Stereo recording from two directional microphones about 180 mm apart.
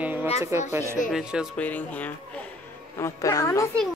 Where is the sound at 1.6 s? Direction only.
10° left (ahead or behind).